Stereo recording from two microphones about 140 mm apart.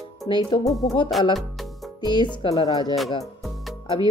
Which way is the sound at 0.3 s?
35° left (ahead or behind).